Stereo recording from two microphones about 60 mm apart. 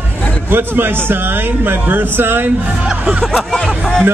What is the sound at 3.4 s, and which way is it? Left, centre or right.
Speech, centre.